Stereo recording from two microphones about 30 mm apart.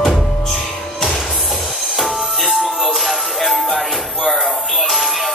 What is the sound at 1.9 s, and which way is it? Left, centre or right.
Music, centre.